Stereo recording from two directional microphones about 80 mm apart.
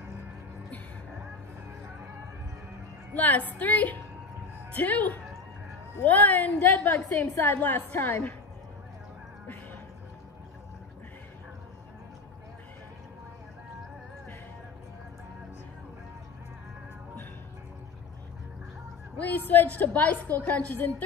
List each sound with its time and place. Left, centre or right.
3.2 s a woman's voice: centre
19.1 s a woman's voice: left